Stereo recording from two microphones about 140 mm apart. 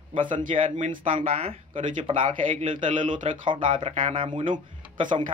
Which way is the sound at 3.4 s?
35° right (ahead or behind).